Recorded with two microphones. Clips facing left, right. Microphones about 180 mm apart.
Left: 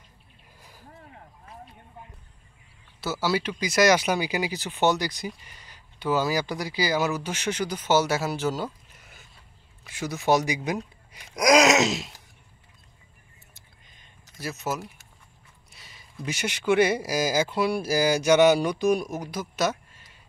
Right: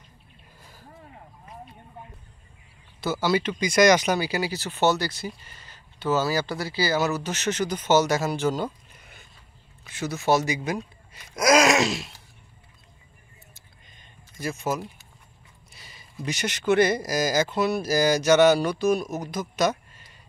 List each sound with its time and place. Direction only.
3.0 s speech: 5° left (ahead or behind)
8.9 s a sound: 5° left (ahead or behind)
9.8 s speech: 10° left (ahead or behind)
11.1 s gasp: 15° left (ahead or behind)
14.4 s speech: 5° left (ahead or behind)
15.7 s a sound: centre (ahead or behind)
16.3 s speech: 10° left (ahead or behind)